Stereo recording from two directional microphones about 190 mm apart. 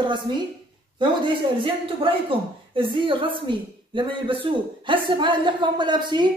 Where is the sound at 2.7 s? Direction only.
25° right (ahead or behind).